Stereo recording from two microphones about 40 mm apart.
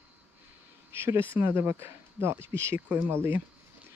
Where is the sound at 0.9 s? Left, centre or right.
Right.